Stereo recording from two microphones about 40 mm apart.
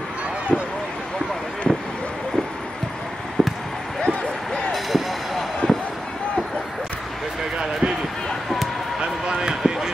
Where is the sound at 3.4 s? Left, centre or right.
Centre.